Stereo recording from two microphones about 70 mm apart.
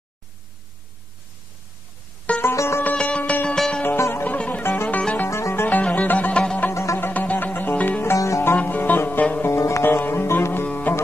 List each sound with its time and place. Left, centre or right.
2.5 s music: left
2.8 s music: centre
3.5 s music: centre
4.1 s music: left
5.3 s music: left
5.7 s music: left
6.7 s music: left
7.0 s music: left
8.2 s music: left
8.5 s music: left
9.5 s music: left